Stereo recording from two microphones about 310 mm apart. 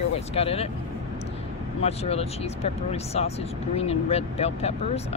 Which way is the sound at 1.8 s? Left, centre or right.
Centre.